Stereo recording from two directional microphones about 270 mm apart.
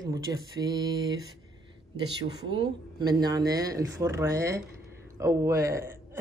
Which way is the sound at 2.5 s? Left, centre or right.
Centre.